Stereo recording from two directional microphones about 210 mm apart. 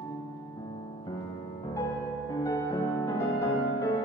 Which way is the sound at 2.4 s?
15° left (ahead or behind).